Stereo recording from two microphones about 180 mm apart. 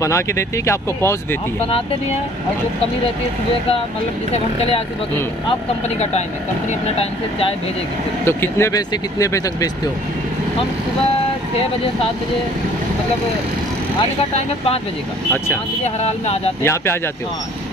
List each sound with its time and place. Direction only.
0.0 s speech: 15° left (ahead or behind)
4.3 s speech: 35° left (ahead or behind)
8.3 s speech: 15° left (ahead or behind)
16.6 s speech: 15° left (ahead or behind)